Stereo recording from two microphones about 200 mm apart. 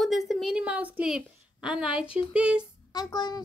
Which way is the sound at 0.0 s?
Centre (ahead or behind).